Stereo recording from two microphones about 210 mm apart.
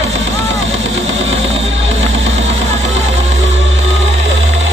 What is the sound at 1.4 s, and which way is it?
Music, 65° right (ahead or behind).